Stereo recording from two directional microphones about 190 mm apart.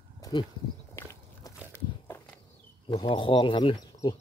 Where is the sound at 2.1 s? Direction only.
10° left (ahead or behind).